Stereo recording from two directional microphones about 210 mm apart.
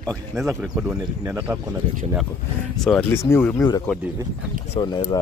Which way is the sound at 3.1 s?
10° left (ahead or behind).